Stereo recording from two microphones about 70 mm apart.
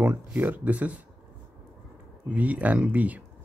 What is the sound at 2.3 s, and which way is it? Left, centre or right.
Speech, right.